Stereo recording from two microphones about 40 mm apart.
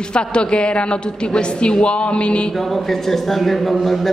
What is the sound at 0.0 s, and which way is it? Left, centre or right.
A woman's voice, left.